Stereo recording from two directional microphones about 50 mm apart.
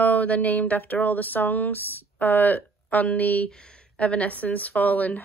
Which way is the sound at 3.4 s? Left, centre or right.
Centre.